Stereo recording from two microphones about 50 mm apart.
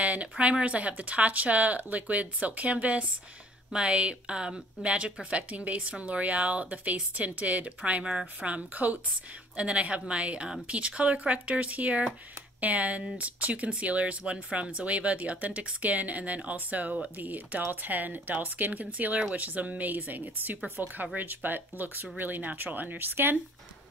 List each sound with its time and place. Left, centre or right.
0.0 s speech: right
8.0 s a woman's voice: centre
8.5 s speech: right